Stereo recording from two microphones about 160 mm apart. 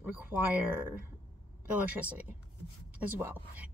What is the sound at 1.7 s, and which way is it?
A woman's voice, 10° right (ahead or behind).